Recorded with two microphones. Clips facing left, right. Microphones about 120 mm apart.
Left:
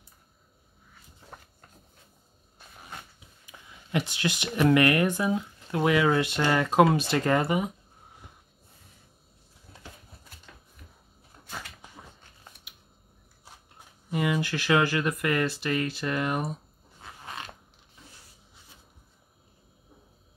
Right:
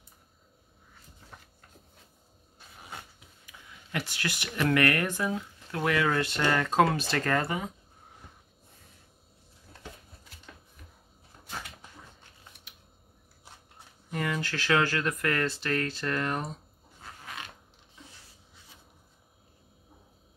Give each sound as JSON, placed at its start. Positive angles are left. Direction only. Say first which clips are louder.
{"t": 3.4, "sound": "speech", "louder": "left 2 dB", "side_deg": 20}
{"t": 14.1, "sound": "speech", "louder": "left 4 dB", "side_deg": 15}